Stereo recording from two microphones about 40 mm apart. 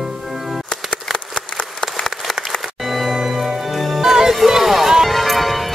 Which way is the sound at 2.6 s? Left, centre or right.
Centre.